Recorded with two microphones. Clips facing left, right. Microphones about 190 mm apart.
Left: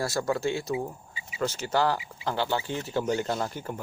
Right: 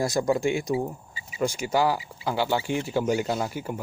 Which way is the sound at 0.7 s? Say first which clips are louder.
Right 4 dB; 40° right (ahead or behind).